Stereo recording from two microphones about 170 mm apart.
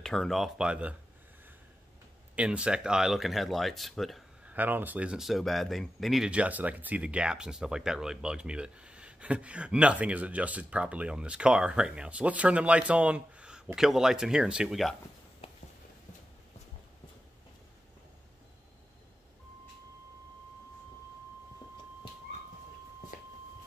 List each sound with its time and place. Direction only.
0.0 s speech: 5° left (ahead or behind)
2.3 s speech: 5° right (ahead or behind)
4.6 s speech: 10° right (ahead or behind)
23.1 s a sound: 55° left (ahead or behind)